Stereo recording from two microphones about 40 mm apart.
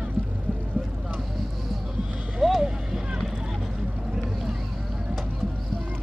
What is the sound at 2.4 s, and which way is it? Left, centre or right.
Vehicle, centre.